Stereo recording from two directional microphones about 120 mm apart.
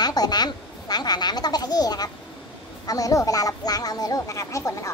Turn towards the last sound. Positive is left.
turn(degrees=25)  # may be behind; listen again after turning